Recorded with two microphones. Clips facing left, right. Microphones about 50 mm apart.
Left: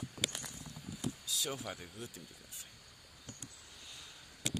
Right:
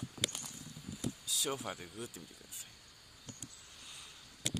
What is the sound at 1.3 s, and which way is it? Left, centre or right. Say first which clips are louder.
Speech: right 4 dB; centre.